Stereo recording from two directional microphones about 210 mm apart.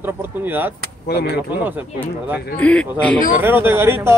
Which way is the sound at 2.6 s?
5° left (ahead or behind).